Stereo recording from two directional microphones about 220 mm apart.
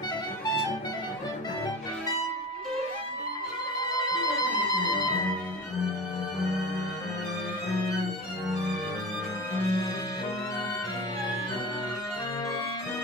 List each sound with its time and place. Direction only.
9.6 s music: 15° left (ahead or behind)